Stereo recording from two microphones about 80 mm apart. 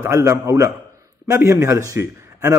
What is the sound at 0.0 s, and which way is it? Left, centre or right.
A man's voice, right.